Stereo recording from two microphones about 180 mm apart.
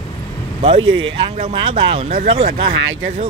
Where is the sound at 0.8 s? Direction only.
90° right.